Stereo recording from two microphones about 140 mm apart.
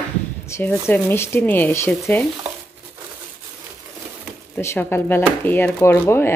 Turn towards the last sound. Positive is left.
turn(degrees=15)  # may be behind; listen again after turning